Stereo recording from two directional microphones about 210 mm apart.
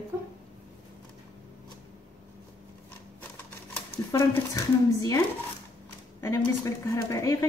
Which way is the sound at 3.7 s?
15° left (ahead or behind).